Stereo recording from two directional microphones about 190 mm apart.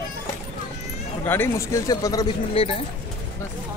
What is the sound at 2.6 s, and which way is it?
Speech, 30° left (ahead or behind).